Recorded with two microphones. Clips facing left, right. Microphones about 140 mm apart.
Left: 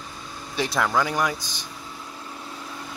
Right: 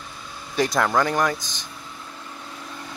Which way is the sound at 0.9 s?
10° left (ahead or behind).